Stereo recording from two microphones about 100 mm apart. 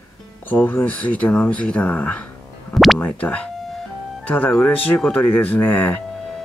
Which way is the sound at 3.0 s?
15° left (ahead or behind).